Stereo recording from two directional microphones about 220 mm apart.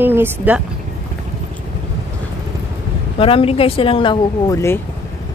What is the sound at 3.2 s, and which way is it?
Speech, 25° left (ahead or behind).